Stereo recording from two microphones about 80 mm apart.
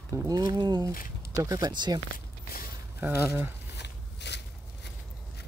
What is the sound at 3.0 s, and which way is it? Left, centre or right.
Speech, right.